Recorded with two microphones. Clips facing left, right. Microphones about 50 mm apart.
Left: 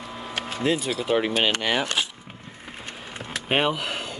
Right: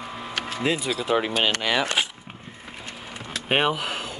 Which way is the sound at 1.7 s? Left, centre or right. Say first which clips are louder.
Right 1 dB; right.